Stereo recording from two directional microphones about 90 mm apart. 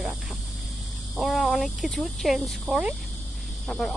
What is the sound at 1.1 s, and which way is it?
Speech, centre (ahead or behind).